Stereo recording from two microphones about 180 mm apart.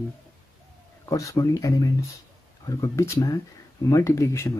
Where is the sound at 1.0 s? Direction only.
15° left (ahead or behind).